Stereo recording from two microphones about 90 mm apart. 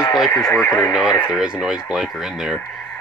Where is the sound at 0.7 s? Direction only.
40° left (ahead or behind).